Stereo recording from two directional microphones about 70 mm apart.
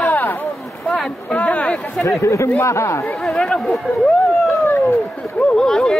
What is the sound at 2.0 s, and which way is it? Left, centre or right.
Speech, left.